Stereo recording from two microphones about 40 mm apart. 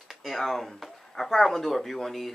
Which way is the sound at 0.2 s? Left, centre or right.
Centre.